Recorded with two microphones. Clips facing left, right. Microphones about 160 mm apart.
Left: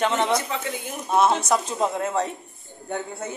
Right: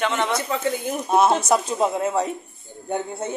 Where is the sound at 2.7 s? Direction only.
15° right (ahead or behind).